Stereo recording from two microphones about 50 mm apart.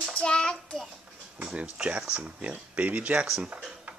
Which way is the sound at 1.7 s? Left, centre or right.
Right.